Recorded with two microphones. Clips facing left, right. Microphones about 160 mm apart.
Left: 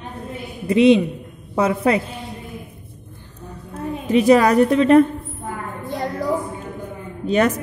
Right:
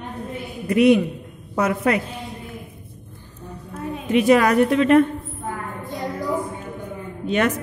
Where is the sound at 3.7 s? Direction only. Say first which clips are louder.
Left 2 dB; 35° left (ahead or behind).